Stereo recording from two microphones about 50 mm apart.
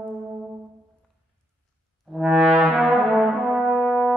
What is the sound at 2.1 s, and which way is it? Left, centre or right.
Music, centre.